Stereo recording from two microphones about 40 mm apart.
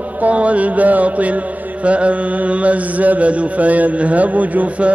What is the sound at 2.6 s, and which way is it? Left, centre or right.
A man's voice, right.